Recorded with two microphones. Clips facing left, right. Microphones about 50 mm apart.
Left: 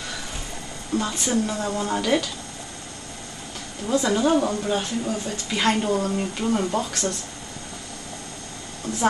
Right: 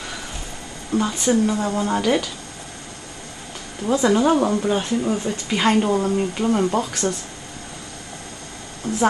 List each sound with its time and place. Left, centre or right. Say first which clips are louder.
0.9 s a woman's voice: right 4 dB; centre
3.8 s a woman's voice: right 4 dB; centre
8.9 s a woman's voice: right 5 dB; right